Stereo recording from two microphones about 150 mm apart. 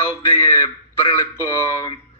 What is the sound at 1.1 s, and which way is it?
Speech, 20° left (ahead or behind).